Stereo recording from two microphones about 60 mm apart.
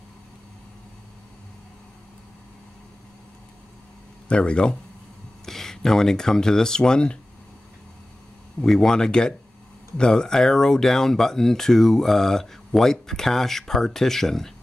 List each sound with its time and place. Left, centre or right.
4.3 s speech: centre
8.5 s speech: centre